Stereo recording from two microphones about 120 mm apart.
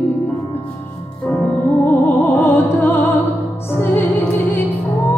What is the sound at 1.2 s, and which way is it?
Music, 15° left (ahead or behind).